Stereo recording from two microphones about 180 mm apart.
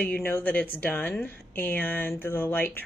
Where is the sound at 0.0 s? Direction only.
10° left (ahead or behind).